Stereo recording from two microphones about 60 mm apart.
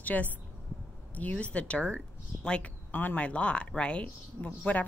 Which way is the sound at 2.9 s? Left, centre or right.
Left.